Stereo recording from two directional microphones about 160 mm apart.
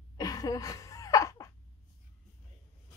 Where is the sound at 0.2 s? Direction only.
20° left (ahead or behind).